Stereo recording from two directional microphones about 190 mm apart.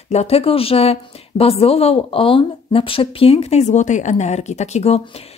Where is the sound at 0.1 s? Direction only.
35° left (ahead or behind).